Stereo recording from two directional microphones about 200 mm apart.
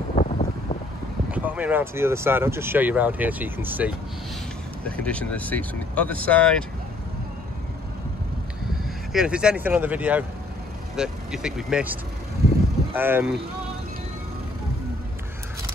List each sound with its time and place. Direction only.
0.1 s vehicle: 40° left (ahead or behind)
1.3 s speech: 10° right (ahead or behind)
4.8 s speech: 5° left (ahead or behind)
9.1 s speech: 5° right (ahead or behind)